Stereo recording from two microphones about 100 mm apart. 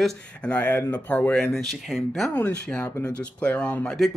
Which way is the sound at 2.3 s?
15° left (ahead or behind).